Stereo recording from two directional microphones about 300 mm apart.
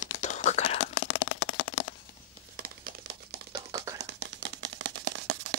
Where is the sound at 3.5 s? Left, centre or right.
Centre.